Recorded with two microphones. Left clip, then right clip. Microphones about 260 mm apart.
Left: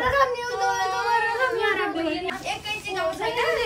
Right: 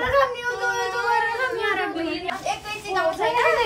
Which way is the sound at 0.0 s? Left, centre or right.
Centre.